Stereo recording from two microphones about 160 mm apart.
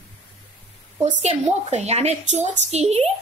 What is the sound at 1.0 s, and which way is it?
A woman's voice, 45° right (ahead or behind).